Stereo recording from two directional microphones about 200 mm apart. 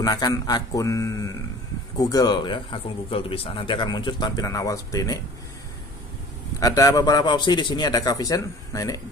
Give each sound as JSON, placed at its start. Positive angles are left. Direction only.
{"t": 0.0, "sound": "a man's voice", "side_deg": 20}
{"t": 6.6, "sound": "speech", "side_deg": 15}